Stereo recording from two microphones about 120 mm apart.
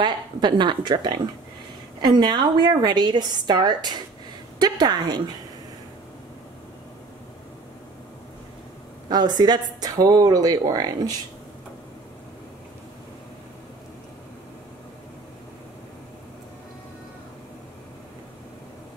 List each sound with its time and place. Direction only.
0.0 s speech: 40° right (ahead or behind)
9.1 s speech: 35° right (ahead or behind)